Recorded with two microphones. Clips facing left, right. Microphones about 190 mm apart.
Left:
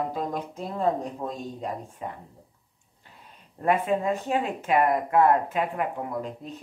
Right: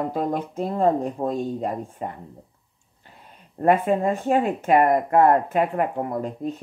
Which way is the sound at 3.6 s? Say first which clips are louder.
Right 5 dB; 50° right (ahead or behind).